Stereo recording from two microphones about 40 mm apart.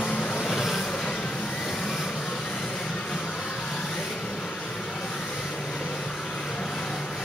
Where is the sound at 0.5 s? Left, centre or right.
Centre.